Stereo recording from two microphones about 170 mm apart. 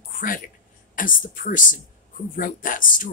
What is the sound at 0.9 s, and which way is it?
Speech, 55° left (ahead or behind).